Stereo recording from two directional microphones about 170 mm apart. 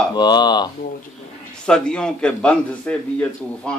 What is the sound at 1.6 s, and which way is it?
A man's voice, 5° left (ahead or behind).